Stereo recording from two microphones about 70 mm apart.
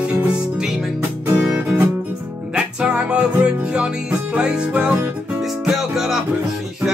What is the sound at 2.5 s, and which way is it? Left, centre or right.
Music, centre.